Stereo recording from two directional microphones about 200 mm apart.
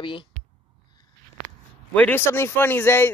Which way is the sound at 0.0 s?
25° left (ahead or behind).